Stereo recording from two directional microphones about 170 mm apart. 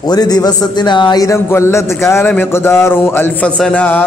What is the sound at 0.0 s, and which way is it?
A man's voice, 25° left (ahead or behind).